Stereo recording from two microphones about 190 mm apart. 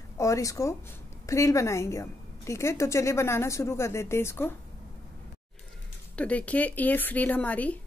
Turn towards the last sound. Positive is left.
turn(degrees=10)  # may be behind; listen again after turning